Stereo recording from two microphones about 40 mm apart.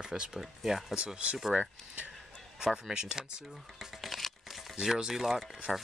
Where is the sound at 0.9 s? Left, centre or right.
Right.